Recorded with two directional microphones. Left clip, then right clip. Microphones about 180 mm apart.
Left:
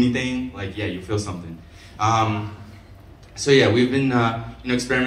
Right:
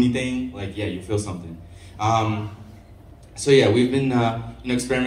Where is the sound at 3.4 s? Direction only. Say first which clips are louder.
Even; 50° right (ahead or behind).